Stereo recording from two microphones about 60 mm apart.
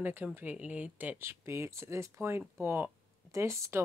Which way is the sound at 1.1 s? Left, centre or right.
Right.